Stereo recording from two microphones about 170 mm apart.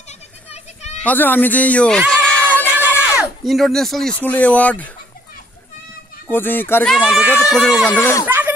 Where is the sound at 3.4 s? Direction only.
Centre (ahead or behind).